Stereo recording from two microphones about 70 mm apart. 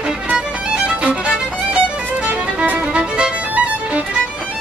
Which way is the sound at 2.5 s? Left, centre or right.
Centre.